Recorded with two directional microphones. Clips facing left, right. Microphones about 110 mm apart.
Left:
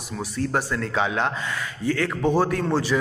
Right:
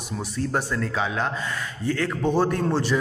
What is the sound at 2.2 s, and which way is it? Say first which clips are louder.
Speech: left 1 dB; 10° left (ahead or behind).